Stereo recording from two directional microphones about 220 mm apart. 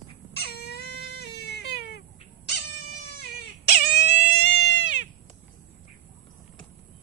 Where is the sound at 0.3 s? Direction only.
45° left (ahead or behind).